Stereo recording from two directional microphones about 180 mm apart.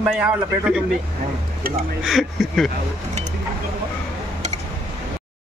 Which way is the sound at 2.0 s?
5° right (ahead or behind).